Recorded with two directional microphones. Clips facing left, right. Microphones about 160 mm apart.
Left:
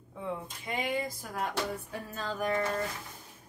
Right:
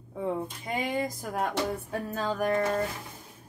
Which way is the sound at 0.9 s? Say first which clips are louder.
Right 4 dB; 50° right (ahead or behind).